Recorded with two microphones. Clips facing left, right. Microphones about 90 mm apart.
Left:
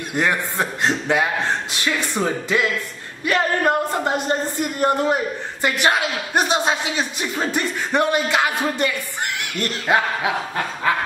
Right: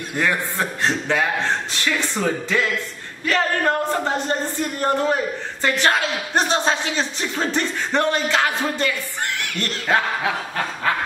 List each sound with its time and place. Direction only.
0.1 s a man's voice: 20° left (ahead or behind)